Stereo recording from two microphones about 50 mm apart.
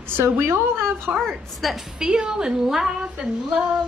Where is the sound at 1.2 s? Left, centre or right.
Centre.